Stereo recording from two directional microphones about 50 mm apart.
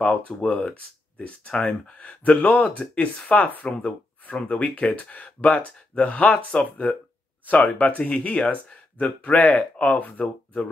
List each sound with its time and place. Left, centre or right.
0.0 s speech: left